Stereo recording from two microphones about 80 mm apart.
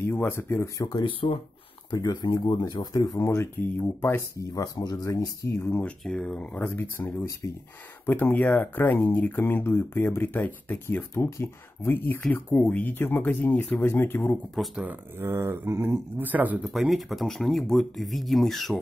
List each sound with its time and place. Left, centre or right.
0.0 s speech: left
0.7 s speech: left
2.2 s speech: left
3.2 s speech: left
4.4 s speech: left
5.7 s speech: centre
11.2 s speech: left
15.1 s mantra: right
16.2 s speech: right
16.6 s speech: centre